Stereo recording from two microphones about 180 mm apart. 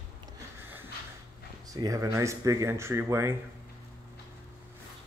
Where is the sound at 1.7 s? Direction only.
20° right (ahead or behind).